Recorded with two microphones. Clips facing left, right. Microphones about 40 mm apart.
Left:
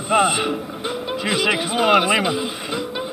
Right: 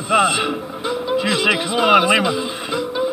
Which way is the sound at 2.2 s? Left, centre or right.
Centre.